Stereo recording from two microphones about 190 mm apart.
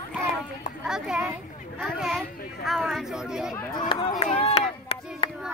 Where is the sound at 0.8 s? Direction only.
5° right (ahead or behind).